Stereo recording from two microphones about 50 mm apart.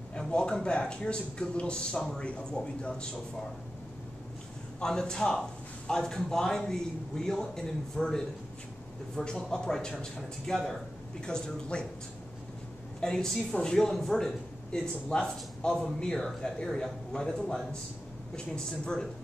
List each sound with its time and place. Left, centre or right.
0.3 s a man's voice: centre
4.7 s a man's voice: centre
13.0 s a man's voice: centre
14.7 s a man's voice: centre